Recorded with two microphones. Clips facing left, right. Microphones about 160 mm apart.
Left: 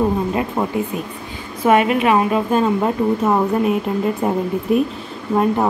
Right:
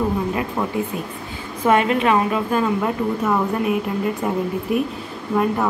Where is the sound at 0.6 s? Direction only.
25° left (ahead or behind).